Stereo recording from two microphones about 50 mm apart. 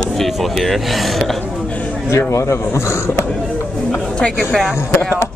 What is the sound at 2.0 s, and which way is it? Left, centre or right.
Speech, left.